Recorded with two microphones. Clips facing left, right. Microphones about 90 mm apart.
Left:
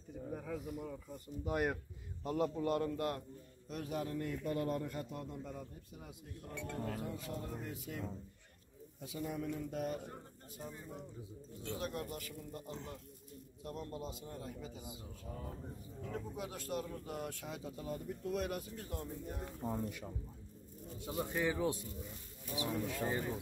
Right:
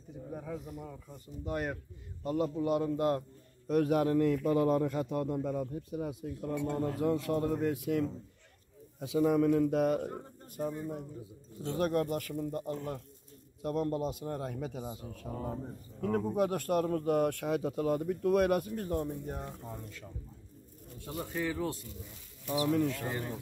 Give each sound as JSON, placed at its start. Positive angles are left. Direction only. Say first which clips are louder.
{"t": 0.3, "sound": "bird", "louder": "right 2 dB", "side_deg": -5}
{"t": 1.4, "sound": "a man's voice", "louder": "right 1 dB", "side_deg": 5}
{"t": 3.0, "sound": "a man's voice", "louder": "right 8 dB", "side_deg": -25}
{"t": 3.6, "sound": "a man's voice", "louder": "right 13 dB", "side_deg": -60}
{"t": 6.5, "sound": "speech", "louder": "right 11 dB", "side_deg": -15}
{"t": 7.0, "sound": "a man's voice", "louder": "right 13 dB", "side_deg": -85}
{"t": 10.5, "sound": "speech", "louder": "right 12 dB", "side_deg": -55}
{"t": 15.3, "sound": "speech", "louder": "right 10 dB", "side_deg": -40}
{"t": 16.0, "sound": "speech", "louder": "right 14 dB", "side_deg": -60}
{"t": 21.1, "sound": "speech", "louder": "right 1 dB", "side_deg": 15}
{"t": 22.5, "sound": "speech", "louder": "right 10 dB", "side_deg": -75}